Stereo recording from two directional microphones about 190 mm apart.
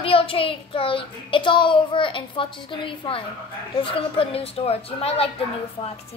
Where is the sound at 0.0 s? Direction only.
30° left (ahead or behind).